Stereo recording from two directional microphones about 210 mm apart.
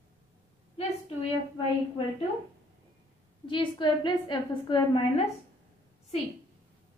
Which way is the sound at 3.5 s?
25° left (ahead or behind).